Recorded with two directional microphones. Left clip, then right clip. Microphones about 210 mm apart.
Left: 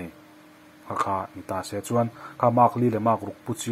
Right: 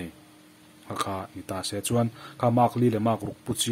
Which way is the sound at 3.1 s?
15° right (ahead or behind).